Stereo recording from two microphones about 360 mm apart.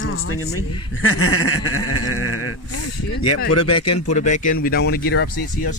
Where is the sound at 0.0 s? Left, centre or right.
Left.